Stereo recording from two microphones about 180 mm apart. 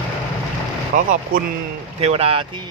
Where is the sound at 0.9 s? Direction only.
45° right (ahead or behind).